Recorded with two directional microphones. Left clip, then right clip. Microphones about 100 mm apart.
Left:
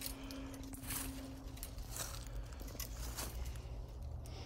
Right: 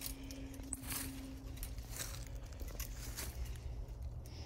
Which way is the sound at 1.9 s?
20° left (ahead or behind).